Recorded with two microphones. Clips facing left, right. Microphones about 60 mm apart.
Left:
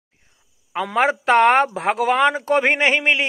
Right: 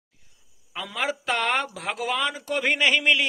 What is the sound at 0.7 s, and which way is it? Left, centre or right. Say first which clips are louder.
A man's voice: left 10 dB; left.